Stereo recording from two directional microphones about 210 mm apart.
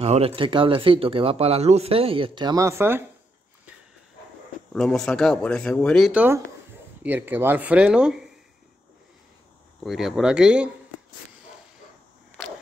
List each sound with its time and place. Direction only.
0.0 s speech: 30° right (ahead or behind); by 3.0 s 10° right (ahead or behind)
4.7 s speech: centre (ahead or behind)
9.8 s speech: centre (ahead or behind)